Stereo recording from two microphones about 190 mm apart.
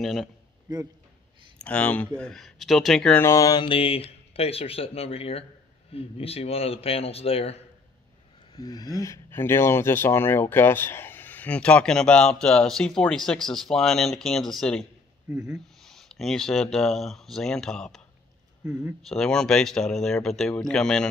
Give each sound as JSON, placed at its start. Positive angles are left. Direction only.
{"t": 0.0, "sound": "speech", "side_deg": 0}
{"t": 1.6, "sound": "speech", "side_deg": 5}
{"t": 3.3, "sound": "speech", "side_deg": 20}
{"t": 8.5, "sound": "speech", "side_deg": 20}